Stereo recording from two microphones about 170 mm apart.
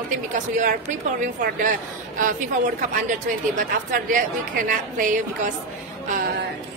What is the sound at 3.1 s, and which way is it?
A woman's voice, 50° right (ahead or behind).